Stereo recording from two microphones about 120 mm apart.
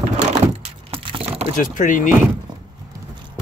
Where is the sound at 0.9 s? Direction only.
50° right (ahead or behind).